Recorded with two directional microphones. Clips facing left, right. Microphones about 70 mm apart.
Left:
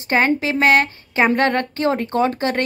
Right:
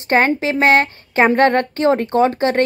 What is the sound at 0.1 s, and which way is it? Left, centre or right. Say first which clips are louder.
A woman's voice: right 2 dB; right.